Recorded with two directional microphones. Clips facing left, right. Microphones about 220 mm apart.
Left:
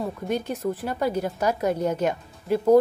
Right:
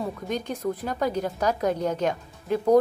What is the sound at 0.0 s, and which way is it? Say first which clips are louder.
A woman's voice: left 2 dB; 5° left (ahead or behind).